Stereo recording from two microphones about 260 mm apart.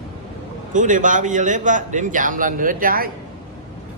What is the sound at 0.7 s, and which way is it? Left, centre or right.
A man's voice, right.